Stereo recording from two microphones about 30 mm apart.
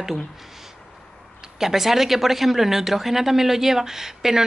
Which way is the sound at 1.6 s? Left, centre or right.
Centre.